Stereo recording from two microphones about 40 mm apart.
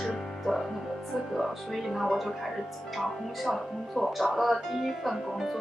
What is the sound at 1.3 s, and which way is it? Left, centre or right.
Speech, centre.